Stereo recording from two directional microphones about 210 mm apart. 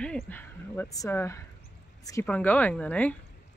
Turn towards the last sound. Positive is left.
turn(degrees=5)  # may be behind; listen again after turning